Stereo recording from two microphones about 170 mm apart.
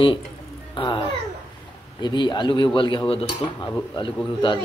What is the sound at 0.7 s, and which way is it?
Babbling, 30° left (ahead or behind).